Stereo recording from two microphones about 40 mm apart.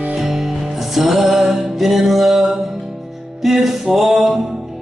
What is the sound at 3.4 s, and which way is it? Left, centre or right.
Music, centre.